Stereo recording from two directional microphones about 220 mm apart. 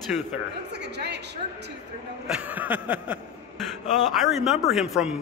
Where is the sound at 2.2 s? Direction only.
5° right (ahead or behind).